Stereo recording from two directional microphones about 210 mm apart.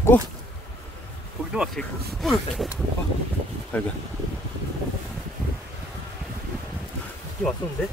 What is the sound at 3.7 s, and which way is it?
Speech, 5° left (ahead or behind).